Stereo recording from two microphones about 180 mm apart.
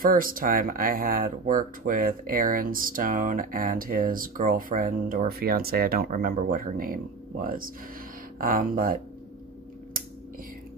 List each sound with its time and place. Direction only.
0.0 s speech: 50° right (ahead or behind)